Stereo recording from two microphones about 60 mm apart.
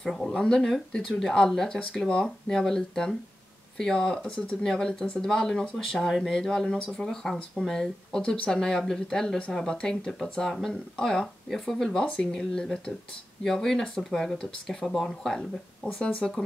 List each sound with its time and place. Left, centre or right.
0.0 s speech: centre